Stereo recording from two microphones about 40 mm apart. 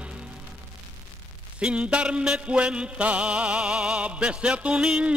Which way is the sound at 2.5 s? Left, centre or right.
Right.